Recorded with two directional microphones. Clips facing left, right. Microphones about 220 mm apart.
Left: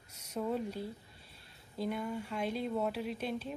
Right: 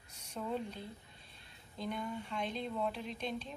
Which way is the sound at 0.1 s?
10° left (ahead or behind).